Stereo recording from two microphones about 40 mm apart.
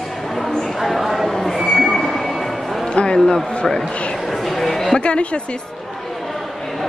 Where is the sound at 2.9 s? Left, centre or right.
Left.